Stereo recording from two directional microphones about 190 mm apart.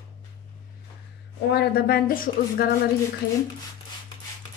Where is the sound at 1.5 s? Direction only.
55° left (ahead or behind).